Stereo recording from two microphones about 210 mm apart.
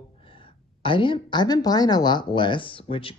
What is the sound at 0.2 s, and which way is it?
A woman's voice, 25° left (ahead or behind).